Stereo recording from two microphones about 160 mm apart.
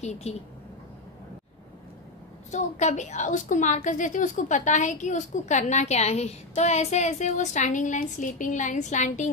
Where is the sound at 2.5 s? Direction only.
45° left (ahead or behind).